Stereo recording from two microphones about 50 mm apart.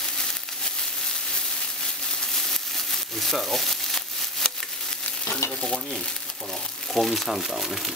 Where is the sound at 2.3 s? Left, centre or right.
Centre.